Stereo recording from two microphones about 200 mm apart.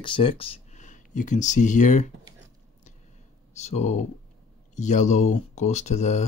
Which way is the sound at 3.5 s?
35° left (ahead or behind).